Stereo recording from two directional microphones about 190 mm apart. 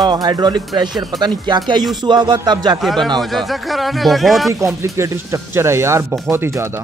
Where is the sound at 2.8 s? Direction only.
Centre (ahead or behind).